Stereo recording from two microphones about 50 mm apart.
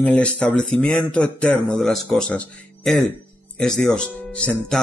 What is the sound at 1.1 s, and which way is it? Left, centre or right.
Speech, centre.